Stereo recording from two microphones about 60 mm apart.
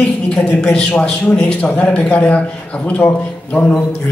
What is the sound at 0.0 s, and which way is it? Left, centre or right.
A man's voice, centre.